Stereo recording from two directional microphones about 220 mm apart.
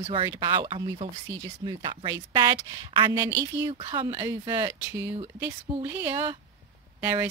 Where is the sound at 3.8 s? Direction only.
25° right (ahead or behind).